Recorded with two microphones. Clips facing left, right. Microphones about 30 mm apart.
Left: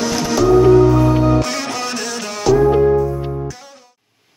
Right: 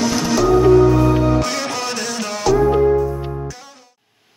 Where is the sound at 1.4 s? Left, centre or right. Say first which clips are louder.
Even; centre.